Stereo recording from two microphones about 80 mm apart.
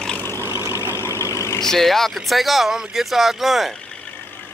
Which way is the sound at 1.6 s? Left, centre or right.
Centre.